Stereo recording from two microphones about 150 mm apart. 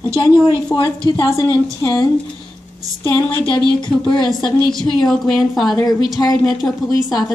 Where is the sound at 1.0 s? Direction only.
30° left (ahead or behind).